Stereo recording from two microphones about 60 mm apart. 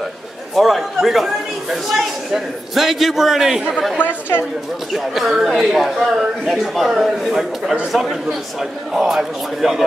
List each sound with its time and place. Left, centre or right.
0.6 s speech: centre
4.0 s a woman's voice: left
4.9 s speech: centre